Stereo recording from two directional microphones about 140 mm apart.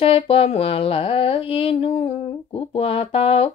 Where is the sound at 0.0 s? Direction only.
45° left (ahead or behind).